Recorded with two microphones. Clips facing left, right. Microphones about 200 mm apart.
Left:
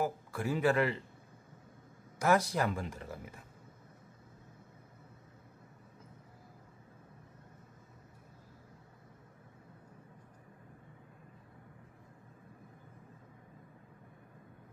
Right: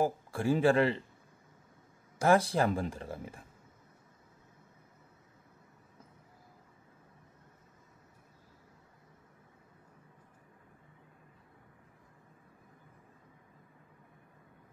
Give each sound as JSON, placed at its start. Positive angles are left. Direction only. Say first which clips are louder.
{"t": 0.0, "sound": "speech", "louder": "right 4 dB", "side_deg": -30}
{"t": 2.1, "sound": "speech", "louder": "right 3 dB", "side_deg": -30}